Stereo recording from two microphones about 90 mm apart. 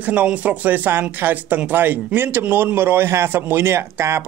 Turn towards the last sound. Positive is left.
turn(degrees=-30)  # may be behind; listen again after turning